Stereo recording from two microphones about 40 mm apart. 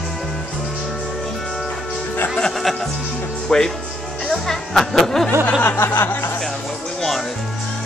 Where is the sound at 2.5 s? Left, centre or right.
Centre.